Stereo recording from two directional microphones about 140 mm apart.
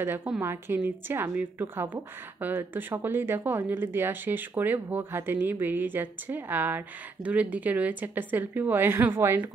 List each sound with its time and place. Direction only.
0.0 s speech: 15° right (ahead or behind)